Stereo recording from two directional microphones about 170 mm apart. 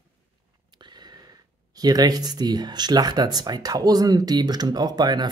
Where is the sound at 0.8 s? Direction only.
25° right (ahead or behind).